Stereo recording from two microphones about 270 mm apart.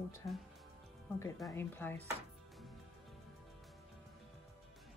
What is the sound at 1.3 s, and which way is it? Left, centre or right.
Speech, centre.